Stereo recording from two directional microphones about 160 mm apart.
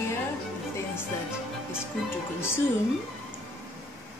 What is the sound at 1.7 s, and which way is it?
Speech, 15° left (ahead or behind).